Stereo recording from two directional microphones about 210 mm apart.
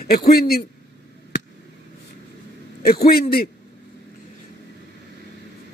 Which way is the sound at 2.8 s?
45° left (ahead or behind).